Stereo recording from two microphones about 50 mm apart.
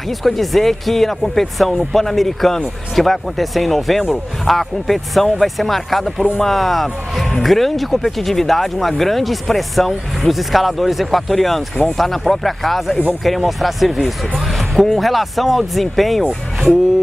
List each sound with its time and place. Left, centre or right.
0.2 s speech: centre